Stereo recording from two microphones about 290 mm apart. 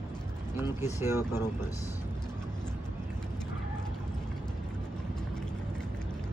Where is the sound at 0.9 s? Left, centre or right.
Centre.